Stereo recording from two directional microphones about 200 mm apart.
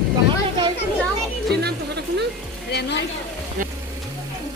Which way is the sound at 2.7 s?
55° left (ahead or behind).